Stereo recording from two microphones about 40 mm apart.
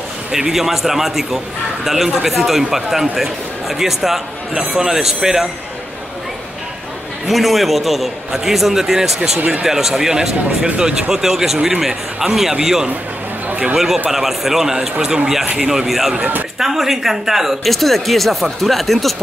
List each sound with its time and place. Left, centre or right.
0.3 s speech: centre
7.2 s a man's voice: centre
14.1 s speech: centre
14.8 s speech: right
17.6 s a man's voice: centre